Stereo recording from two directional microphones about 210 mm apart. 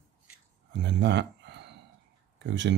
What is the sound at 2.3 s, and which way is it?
Speech, 60° right (ahead or behind).